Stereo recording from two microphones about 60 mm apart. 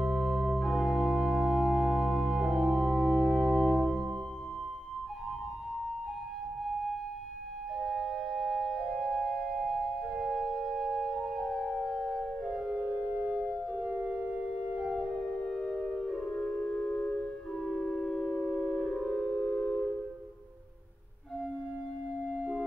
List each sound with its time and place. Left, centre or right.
0.0 s organ: centre
7.9 s organ: centre
12.5 s organ: centre
13.0 s music: right
14.8 s music: centre
16.6 s a sound: centre
17.6 s a sound: centre
18.9 s music: centre
19.3 s a sound: centre
22.3 s music: centre